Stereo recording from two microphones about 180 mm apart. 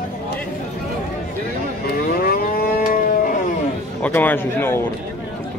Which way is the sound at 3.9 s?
10° left (ahead or behind).